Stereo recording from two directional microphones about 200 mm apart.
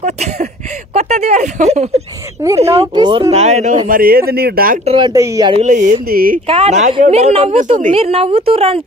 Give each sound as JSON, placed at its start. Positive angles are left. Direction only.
{"t": 0.0, "sound": "speech", "side_deg": -35}
{"t": 4.8, "sound": "a woman's voice", "side_deg": -25}
{"t": 5.5, "sound": "speech", "side_deg": -35}
{"t": 6.4, "sound": "a woman's voice", "side_deg": -30}